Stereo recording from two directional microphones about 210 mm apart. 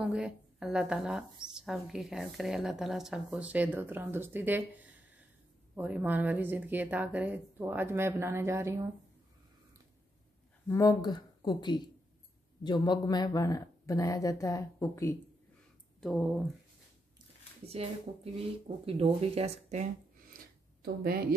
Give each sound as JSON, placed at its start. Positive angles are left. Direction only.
{"t": 0.0, "sound": "a woman's voice", "side_deg": 0}
{"t": 10.7, "sound": "speech", "side_deg": 15}
{"t": 16.0, "sound": "a woman's voice", "side_deg": 0}
{"t": 17.6, "sound": "speech", "side_deg": -30}
{"t": 20.8, "sound": "speech", "side_deg": -45}